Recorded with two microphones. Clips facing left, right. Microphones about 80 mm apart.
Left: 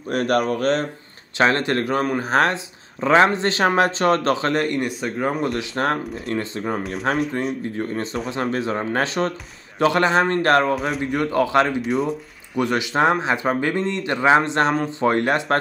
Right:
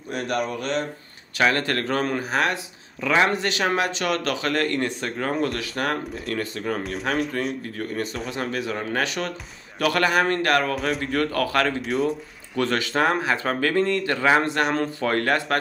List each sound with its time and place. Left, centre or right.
0.1 s speech: left
1.4 s speech: left
2.2 s speech: left; by 5.4 s centre
5.8 s speech: left
6.8 s speech: centre
7.7 s speech: left
10.8 s a man's voice: centre
11.2 s speech: left
11.8 s speech: centre
12.5 s speech: centre